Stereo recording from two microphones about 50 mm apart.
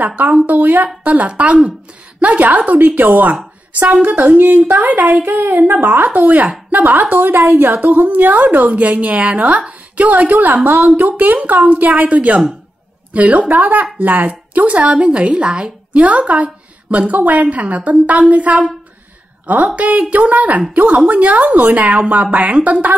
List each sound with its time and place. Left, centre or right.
0.0 s a woman's voice: right